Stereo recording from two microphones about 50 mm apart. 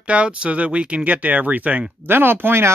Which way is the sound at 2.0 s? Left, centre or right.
Right.